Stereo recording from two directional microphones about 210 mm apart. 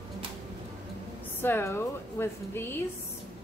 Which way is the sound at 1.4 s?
10° left (ahead or behind).